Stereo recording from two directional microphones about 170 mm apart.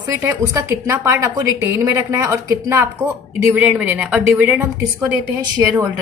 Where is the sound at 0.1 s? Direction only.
15° right (ahead or behind).